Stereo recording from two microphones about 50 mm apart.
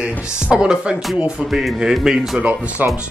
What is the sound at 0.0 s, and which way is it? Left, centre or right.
Speech, right.